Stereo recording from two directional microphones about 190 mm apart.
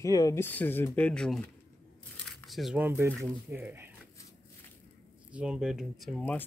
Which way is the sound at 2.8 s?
10° right (ahead or behind).